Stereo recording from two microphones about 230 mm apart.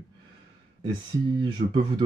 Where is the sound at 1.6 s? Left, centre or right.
Right.